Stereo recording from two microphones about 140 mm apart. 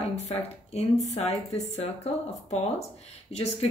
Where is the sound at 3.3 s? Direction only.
45° left (ahead or behind).